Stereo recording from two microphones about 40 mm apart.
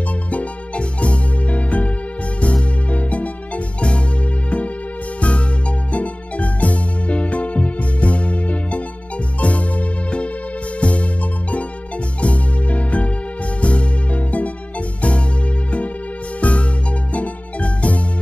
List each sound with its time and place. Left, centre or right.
0.3 s music: left
5.9 s music: left
12.2 s music: left
16.3 s music: left